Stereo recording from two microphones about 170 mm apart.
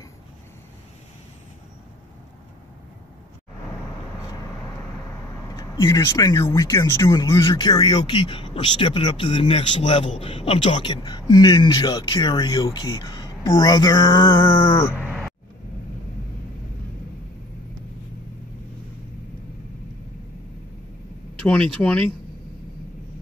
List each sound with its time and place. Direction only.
5.6 s speech: 20° left (ahead or behind)
14.5 s a sound: 15° left (ahead or behind)
15.0 s vehicle: 10° right (ahead or behind)
21.4 s speech: 5° left (ahead or behind)